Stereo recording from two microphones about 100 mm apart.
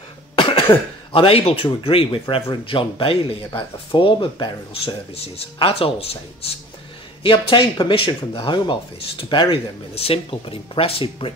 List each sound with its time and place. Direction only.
0.4 s cough: 60° left (ahead or behind)
1.1 s speech: 70° left (ahead or behind)
7.2 s speech: 60° left (ahead or behind)
9.9 s speech: 80° left; by 11.3 s 65° left (ahead or behind)